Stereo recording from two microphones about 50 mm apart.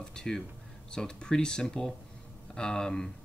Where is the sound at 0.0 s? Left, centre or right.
Centre.